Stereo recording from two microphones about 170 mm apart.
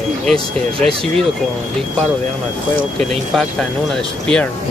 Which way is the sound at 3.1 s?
Centre (ahead or behind).